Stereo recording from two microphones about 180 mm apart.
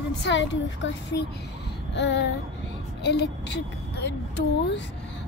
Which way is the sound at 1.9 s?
80° left.